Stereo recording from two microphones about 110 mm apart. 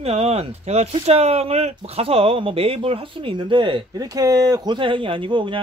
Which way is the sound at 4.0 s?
35° right (ahead or behind).